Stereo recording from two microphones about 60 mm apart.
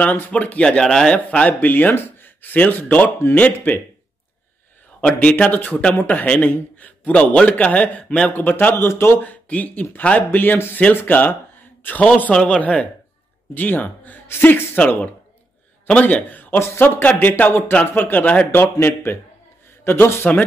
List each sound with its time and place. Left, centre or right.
0.0 s a man's voice: left; by 1.1 s centre
1.1 s a man's voice: left
5.0 s a man's voice: left
8.8 s a man's voice: left
15.9 s a man's voice: left
16.5 s a man's voice: left